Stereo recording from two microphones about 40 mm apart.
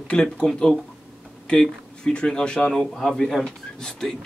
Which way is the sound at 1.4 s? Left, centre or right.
Left.